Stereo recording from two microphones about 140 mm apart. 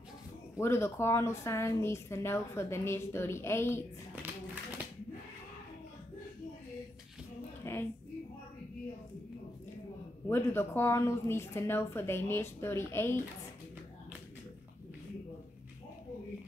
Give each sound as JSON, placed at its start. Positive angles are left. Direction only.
{"t": 0.6, "sound": "a woman's voice", "side_deg": 20}
{"t": 4.1, "sound": "a sound", "side_deg": -10}
{"t": 7.7, "sound": "music", "side_deg": 20}
{"t": 10.2, "sound": "a woman's voice", "side_deg": 15}